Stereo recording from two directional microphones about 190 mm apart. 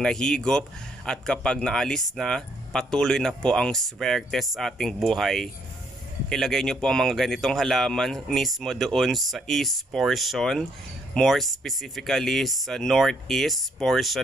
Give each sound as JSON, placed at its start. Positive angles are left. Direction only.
{"t": 0.0, "sound": "speech", "side_deg": 5}